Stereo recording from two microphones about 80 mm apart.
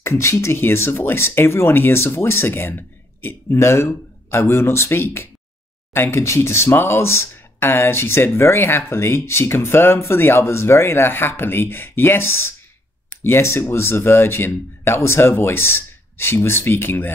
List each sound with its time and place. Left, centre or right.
0.0 s speech: left